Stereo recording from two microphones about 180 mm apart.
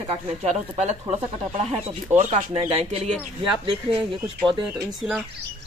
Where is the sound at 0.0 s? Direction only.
35° right (ahead or behind).